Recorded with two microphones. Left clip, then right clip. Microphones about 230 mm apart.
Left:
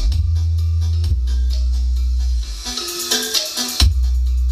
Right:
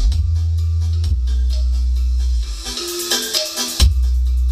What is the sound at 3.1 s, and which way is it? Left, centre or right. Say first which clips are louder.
Music: left 1 dB; right.